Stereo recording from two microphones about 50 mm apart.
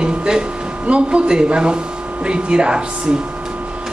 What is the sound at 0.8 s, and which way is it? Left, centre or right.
Speech, right.